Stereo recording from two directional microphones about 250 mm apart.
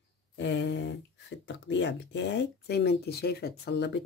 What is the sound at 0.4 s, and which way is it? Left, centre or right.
Speech, left.